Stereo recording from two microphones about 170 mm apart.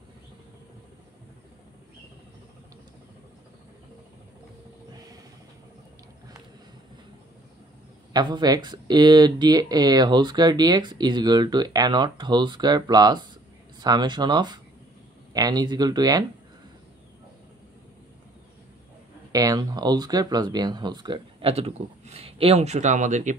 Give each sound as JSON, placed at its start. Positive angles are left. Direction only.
{"t": 8.1, "sound": "speech", "side_deg": -25}
{"t": 19.3, "sound": "speech", "side_deg": -20}